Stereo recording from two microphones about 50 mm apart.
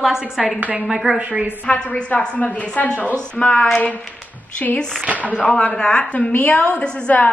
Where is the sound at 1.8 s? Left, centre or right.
Left.